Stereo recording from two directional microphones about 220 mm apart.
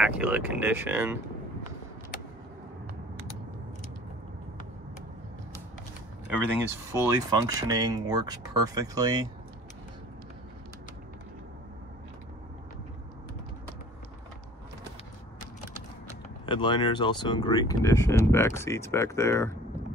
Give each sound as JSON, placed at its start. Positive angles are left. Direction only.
{"t": 0.0, "sound": "speech", "side_deg": -5}
{"t": 6.9, "sound": "speech", "side_deg": -15}
{"t": 16.4, "sound": "speech", "side_deg": 20}